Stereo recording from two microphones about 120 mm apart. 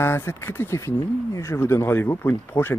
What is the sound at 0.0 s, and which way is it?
Speech, 20° left (ahead or behind).